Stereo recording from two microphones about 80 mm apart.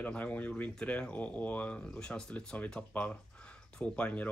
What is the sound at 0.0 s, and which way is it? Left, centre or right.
Speech, centre.